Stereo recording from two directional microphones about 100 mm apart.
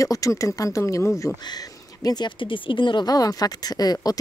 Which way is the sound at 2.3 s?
55° left (ahead or behind).